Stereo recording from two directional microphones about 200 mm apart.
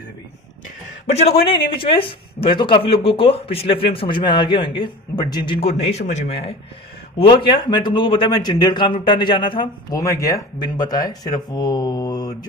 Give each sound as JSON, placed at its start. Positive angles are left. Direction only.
{"t": 1.1, "sound": "speech", "side_deg": 30}
{"t": 7.2, "sound": "speech", "side_deg": 25}